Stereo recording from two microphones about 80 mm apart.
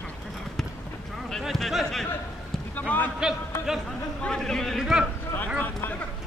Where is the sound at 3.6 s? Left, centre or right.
Centre.